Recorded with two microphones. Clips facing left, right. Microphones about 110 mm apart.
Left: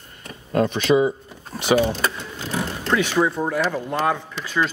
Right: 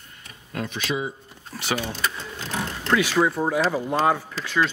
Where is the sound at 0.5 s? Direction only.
45° left (ahead or behind).